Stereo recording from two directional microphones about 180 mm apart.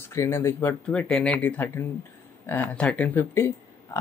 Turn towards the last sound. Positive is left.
turn(degrees=10)  # may be behind; listen again after turning